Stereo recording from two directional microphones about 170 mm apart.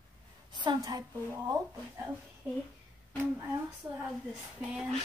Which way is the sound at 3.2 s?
15° right (ahead or behind).